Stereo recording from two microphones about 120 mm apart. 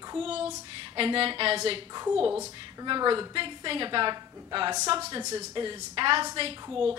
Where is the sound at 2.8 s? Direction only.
35° right (ahead or behind).